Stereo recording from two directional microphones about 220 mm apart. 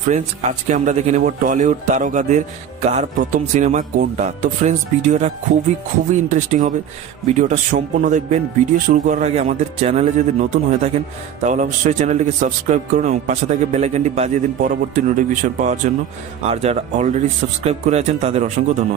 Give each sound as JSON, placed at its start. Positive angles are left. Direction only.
{"t": 0.0, "sound": "speech", "side_deg": -35}